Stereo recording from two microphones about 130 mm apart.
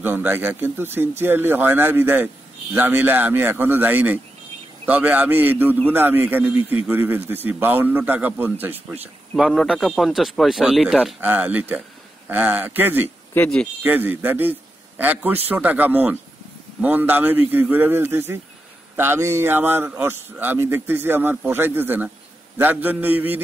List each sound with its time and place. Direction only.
0.0 s a man's voice: 15° right (ahead or behind)
9.4 s speech: centre (ahead or behind)
11.1 s a man's voice: 15° right (ahead or behind)